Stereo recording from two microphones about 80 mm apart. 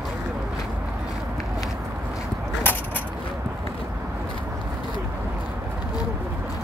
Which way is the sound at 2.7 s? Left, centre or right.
Left.